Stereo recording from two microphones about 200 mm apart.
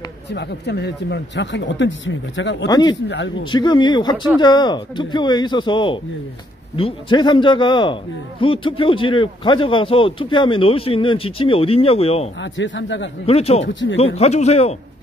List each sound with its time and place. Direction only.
0.3 s speech: 60° left (ahead or behind)
2.7 s a man's voice: 20° left (ahead or behind)
3.1 s speech: 65° left (ahead or behind)
3.5 s a man's voice: 20° left (ahead or behind)
12.4 s speech: 65° left (ahead or behind)
13.3 s a man's voice: 30° left (ahead or behind)